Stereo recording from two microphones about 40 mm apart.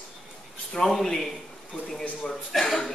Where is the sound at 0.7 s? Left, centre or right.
Centre.